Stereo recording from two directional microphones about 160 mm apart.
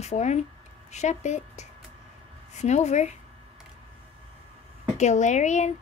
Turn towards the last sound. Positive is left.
turn(degrees=45)  # may be behind; listen again after turning